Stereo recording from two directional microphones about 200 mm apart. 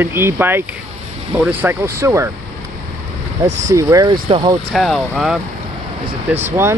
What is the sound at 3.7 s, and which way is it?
Speech, 15° right (ahead or behind).